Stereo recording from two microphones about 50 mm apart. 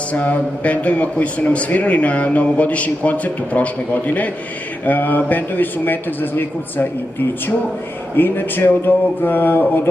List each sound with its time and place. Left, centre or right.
0.1 s a man's voice: left
4.8 s a man's voice: left
8.2 s a man's voice: left